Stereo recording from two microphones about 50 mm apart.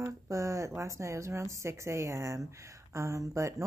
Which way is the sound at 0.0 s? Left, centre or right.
Right.